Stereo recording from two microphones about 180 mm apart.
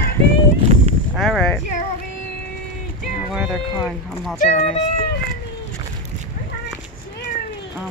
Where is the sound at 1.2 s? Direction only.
Centre (ahead or behind).